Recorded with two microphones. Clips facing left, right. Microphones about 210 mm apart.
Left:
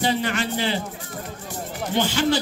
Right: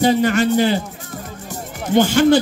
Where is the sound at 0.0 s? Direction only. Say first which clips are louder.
Right 8 dB; 45° right (ahead or behind).